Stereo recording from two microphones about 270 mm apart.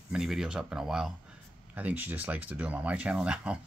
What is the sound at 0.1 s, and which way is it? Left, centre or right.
Speech, centre.